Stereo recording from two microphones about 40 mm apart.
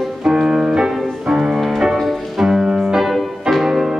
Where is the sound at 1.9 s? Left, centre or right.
Centre.